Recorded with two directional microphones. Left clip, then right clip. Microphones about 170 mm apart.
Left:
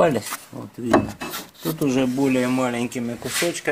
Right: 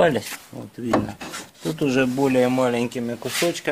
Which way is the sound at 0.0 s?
10° right (ahead or behind).